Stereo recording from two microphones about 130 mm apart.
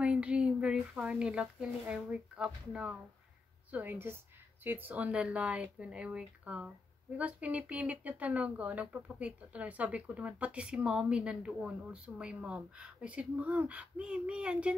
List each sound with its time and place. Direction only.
0.0 s speech: 10° right (ahead or behind)